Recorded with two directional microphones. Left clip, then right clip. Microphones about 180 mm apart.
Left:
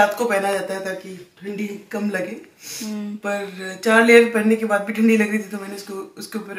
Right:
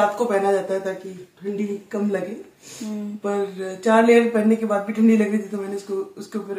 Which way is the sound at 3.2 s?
20° right (ahead or behind).